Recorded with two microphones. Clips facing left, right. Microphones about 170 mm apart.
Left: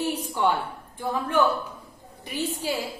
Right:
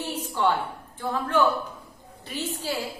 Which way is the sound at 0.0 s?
10° left (ahead or behind).